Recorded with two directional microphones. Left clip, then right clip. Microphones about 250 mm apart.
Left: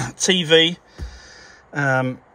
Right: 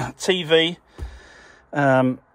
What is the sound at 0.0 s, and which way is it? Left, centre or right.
Speech, centre.